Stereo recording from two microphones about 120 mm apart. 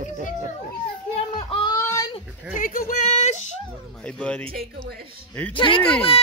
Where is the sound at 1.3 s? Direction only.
45° left (ahead or behind).